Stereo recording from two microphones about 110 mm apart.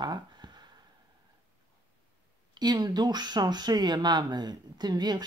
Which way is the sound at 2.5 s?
40° right (ahead or behind).